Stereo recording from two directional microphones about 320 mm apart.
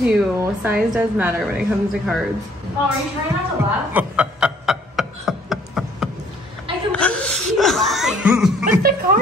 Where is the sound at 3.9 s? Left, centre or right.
Centre.